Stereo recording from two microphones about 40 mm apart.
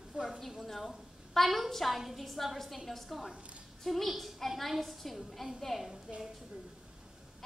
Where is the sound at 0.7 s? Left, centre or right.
Centre.